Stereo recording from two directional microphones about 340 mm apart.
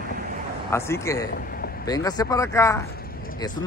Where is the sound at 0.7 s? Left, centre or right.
Centre.